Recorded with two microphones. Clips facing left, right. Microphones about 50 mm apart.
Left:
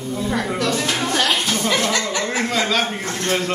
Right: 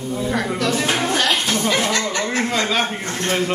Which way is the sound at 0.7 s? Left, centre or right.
Centre.